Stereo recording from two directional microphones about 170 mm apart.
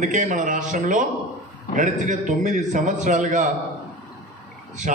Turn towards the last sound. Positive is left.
turn(degrees=-45)  # may be behind; listen again after turning